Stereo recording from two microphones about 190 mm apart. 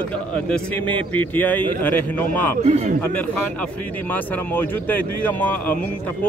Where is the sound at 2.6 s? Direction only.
35° right (ahead or behind).